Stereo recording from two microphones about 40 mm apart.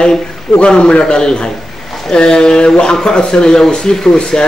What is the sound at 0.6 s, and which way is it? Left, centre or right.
Speech, left.